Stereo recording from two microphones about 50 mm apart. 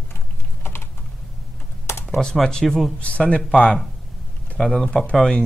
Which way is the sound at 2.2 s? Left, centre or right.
Centre.